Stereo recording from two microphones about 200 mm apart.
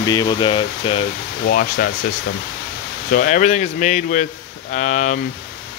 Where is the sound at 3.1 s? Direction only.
40° left (ahead or behind).